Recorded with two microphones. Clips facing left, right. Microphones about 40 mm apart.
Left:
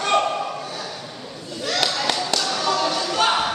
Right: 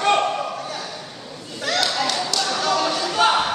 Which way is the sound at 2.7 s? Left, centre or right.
Centre.